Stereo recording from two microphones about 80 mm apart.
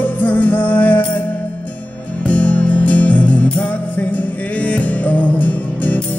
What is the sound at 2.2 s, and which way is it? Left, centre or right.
Music, centre.